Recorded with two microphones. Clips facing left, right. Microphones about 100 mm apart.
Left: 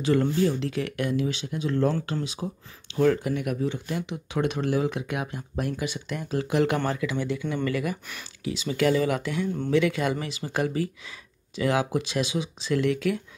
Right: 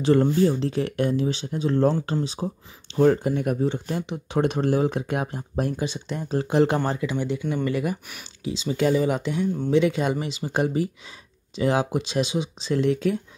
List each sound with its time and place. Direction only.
0.0 s speech: 35° right (ahead or behind)